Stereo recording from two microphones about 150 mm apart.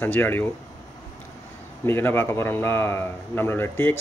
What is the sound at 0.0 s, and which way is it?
Speech, 15° left (ahead or behind).